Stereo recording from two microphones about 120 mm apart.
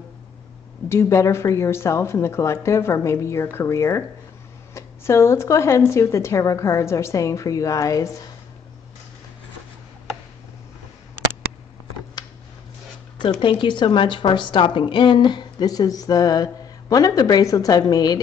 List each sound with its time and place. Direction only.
0.8 s speech: 25° left (ahead or behind)
13.4 s a woman's voice: 45° left (ahead or behind)